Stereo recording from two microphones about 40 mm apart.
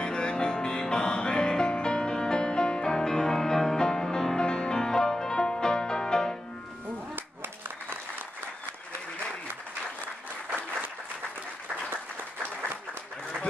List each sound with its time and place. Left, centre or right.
0.0 s music: left